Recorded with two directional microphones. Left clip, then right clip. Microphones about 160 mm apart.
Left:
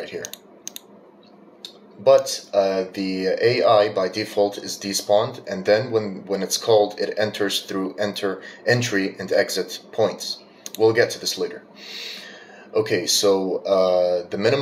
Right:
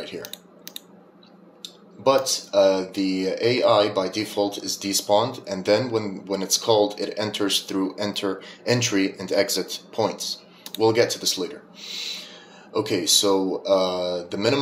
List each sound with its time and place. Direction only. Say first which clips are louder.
1.6 s speech: left 1 dB; 35° right (ahead or behind)